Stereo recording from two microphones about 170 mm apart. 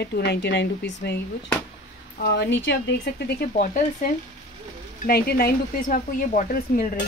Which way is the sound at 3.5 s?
50° left (ahead or behind).